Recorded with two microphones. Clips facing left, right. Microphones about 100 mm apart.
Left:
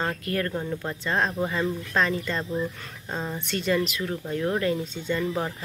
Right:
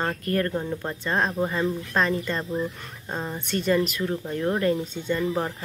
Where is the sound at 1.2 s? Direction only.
Centre (ahead or behind).